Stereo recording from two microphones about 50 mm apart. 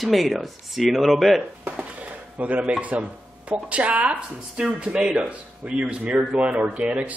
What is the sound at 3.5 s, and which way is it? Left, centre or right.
Speech, right.